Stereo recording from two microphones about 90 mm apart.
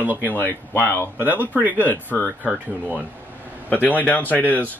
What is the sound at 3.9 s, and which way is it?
Speech, 20° left (ahead or behind).